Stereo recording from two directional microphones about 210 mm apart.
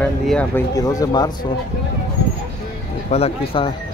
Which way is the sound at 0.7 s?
15° left (ahead or behind).